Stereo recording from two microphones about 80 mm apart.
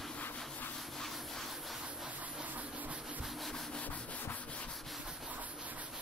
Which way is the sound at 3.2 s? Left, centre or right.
Centre.